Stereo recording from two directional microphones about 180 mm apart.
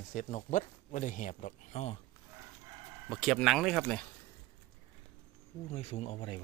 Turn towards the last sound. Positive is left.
turn(degrees=30)  # may be behind; listen again after turning